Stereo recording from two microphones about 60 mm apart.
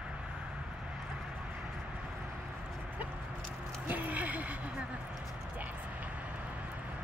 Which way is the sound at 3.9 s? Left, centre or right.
Right.